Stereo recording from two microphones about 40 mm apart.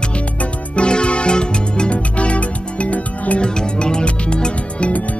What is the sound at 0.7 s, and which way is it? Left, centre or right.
Music, left.